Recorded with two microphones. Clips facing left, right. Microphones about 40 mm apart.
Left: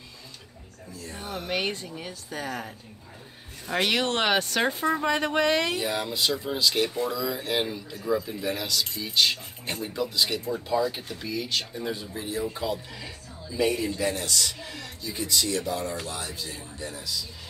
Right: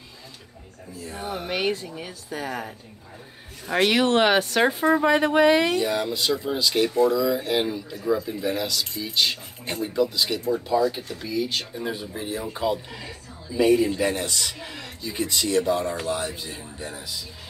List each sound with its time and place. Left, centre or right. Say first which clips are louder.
1.0 s speech: right 4 dB; centre
5.8 s speech: right 4 dB; centre
11.4 s speech: right 2 dB; centre
13.8 s speech: right 3 dB; right